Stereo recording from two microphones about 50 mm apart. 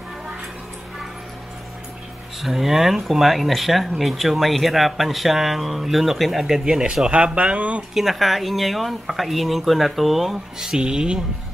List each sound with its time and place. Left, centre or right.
2.4 s speech: centre; by 7.8 s right
7.9 s speech: centre